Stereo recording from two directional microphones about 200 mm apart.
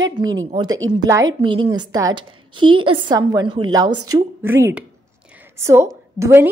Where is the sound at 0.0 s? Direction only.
20° right (ahead or behind).